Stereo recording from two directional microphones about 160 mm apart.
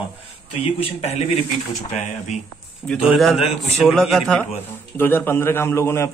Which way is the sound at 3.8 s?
Centre (ahead or behind).